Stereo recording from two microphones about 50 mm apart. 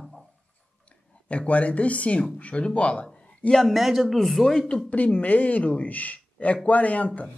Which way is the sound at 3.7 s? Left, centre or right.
Centre.